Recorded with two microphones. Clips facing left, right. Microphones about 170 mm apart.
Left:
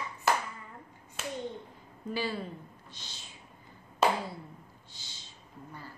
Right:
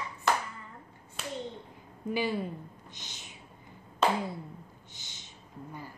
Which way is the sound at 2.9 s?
20° right (ahead or behind).